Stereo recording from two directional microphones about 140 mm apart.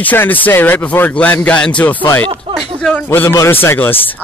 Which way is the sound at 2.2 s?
35° right (ahead or behind).